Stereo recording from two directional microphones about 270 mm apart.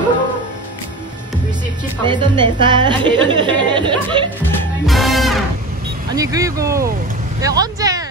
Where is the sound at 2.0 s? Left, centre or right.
Centre.